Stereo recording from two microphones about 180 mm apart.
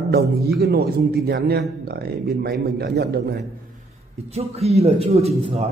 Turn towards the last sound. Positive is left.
turn(degrees=-35)  # may be behind; listen again after turning